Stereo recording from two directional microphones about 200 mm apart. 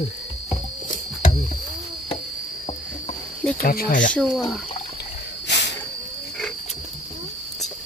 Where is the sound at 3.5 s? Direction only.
45° left (ahead or behind).